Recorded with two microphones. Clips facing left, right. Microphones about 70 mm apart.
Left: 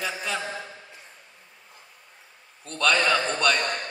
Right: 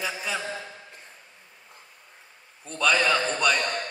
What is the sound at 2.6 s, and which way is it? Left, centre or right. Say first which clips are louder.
Speech: even; centre.